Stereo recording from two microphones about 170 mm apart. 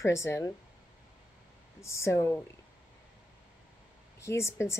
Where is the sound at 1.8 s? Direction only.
15° left (ahead or behind).